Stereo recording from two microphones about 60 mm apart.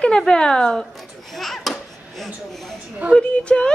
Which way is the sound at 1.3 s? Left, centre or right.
Centre.